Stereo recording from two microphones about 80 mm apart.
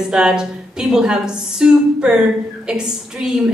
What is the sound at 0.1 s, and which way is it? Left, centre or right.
A woman's voice, centre.